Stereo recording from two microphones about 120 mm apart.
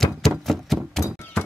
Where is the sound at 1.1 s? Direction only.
15° left (ahead or behind).